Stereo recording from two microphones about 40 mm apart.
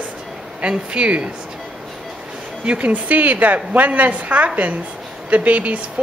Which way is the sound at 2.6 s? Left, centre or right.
Right.